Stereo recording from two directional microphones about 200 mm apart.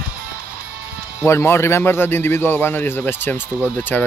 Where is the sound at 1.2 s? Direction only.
15° left (ahead or behind).